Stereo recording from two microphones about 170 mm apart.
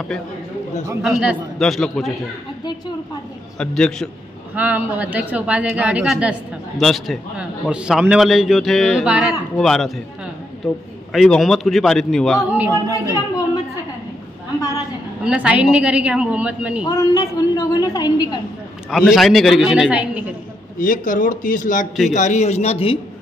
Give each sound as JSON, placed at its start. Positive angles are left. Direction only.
{"t": 1.0, "sound": "a man's voice", "side_deg": 0}
{"t": 3.5, "sound": "a man's voice", "side_deg": 5}
{"t": 4.6, "sound": "a woman's voice", "side_deg": -10}
{"t": 12.5, "sound": "a woman's voice", "side_deg": -10}
{"t": 15.2, "sound": "a woman's voice", "side_deg": -5}
{"t": 16.8, "sound": "a woman's voice", "side_deg": 20}
{"t": 18.9, "sound": "a man's voice", "side_deg": 0}
{"t": 20.8, "sound": "a man's voice", "side_deg": 55}